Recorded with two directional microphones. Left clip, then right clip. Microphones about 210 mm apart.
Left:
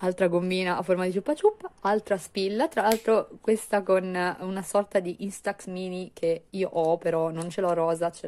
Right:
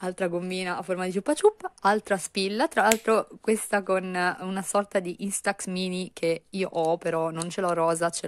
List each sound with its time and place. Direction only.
0.0 s speech: 5° right (ahead or behind); by 8.3 s 25° right (ahead or behind)